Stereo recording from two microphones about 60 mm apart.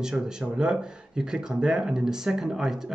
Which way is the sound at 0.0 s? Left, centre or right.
Centre.